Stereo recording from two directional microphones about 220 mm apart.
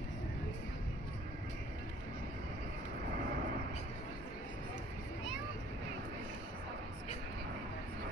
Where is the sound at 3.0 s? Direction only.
45° right (ahead or behind).